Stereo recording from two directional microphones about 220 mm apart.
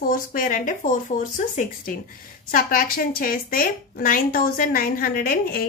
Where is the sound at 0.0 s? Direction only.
40° left (ahead or behind).